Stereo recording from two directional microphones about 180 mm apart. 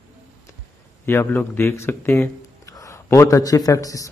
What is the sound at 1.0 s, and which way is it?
Speech, 10° left (ahead or behind).